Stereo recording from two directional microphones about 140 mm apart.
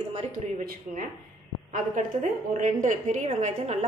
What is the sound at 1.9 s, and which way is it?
A woman's voice, 65° right (ahead or behind).